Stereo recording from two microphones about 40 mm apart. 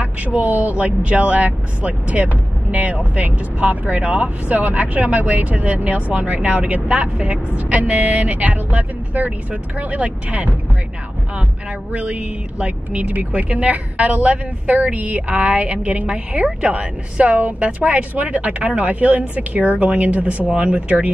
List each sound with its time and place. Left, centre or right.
0.0 s speech: right
11.9 s speech: right